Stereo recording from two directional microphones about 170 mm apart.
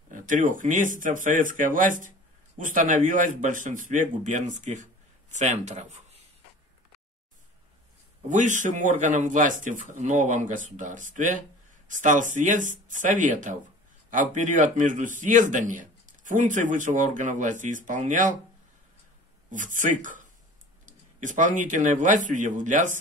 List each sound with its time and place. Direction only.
0.1 s speech: 50° right (ahead or behind)
8.3 s speech: 45° right (ahead or behind)
19.5 s speech: 50° right (ahead or behind)